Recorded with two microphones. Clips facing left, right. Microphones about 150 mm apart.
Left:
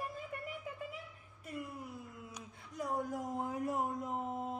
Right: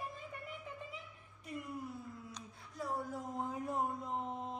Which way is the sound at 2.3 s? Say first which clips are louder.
Left 2 dB; 15° left (ahead or behind).